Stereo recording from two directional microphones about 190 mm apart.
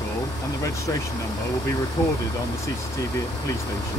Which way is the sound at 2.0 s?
20° left (ahead or behind).